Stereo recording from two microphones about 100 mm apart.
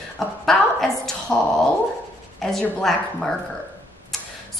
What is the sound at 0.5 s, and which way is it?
Speech, 5° left (ahead or behind).